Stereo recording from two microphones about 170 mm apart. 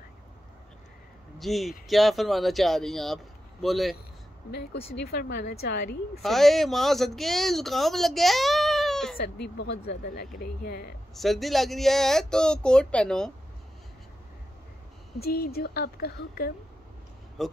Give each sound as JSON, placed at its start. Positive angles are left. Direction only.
{"t": 1.4, "sound": "speech", "side_deg": 0}
{"t": 5.0, "sound": "speech", "side_deg": 75}
{"t": 6.2, "sound": "speech", "side_deg": 0}
{"t": 9.1, "sound": "speech", "side_deg": 70}
{"t": 11.1, "sound": "speech", "side_deg": 0}
{"t": 15.1, "sound": "a woman's voice", "side_deg": 65}
{"t": 17.4, "sound": "speech", "side_deg": 0}